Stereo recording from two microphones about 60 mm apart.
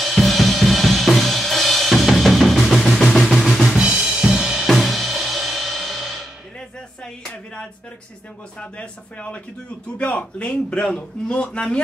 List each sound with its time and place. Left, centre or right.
0.0 s drum kit: centre
2.8 s music: centre
3.8 s music: centre
8.5 s a man's voice: left